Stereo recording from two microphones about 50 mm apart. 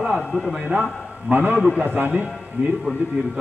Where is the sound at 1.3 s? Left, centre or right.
Right.